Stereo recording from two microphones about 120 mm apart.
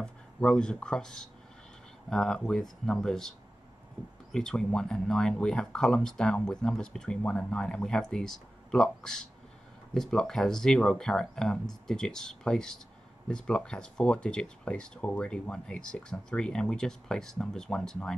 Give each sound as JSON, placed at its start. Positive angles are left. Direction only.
{"t": 0.0, "sound": "speech", "side_deg": 5}